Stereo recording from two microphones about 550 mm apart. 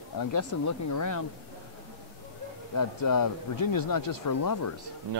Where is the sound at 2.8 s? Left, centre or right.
Left.